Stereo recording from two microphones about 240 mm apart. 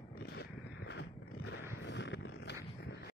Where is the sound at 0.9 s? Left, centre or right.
Left.